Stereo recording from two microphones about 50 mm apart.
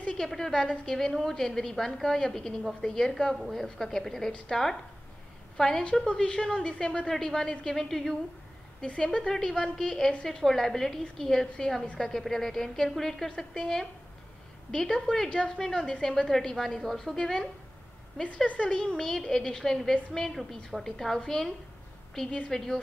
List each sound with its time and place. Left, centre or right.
0.2 s a woman's voice: centre
3.3 s a woman's voice: centre
3.6 s a woman's voice: centre
8.8 s a woman's voice: centre
18.7 s a woman's voice: centre